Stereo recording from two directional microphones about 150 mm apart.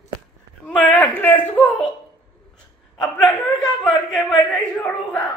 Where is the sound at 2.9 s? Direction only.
5° left (ahead or behind).